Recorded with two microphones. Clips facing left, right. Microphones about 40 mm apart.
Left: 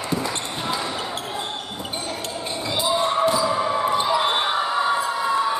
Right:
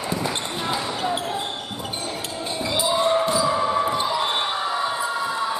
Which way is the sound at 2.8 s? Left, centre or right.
Centre.